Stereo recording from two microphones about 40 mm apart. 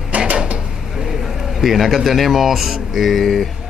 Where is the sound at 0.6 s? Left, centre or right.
Centre.